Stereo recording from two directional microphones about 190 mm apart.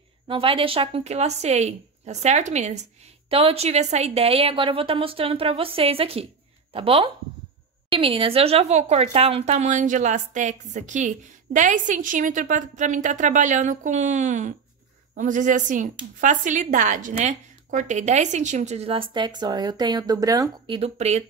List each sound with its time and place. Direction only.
0.3 s a woman's voice: 30° right (ahead or behind)